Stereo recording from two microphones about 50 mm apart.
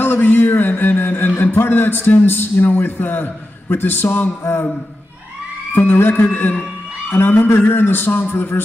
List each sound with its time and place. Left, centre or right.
0.0 s speech: left
5.8 s a man's voice: left